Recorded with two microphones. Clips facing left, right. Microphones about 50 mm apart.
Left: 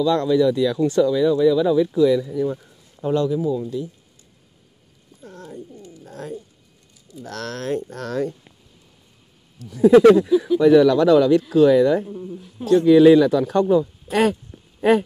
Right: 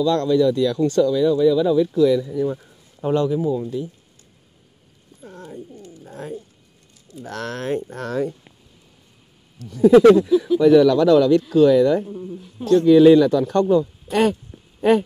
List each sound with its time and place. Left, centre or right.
0.0 s speech: centre
2.3 s speech: centre
3.0 s speech: right
5.2 s wild animals: right
6.0 s a sound: right
7.2 s speech: right
9.6 s speech: centre
12.6 s speech: centre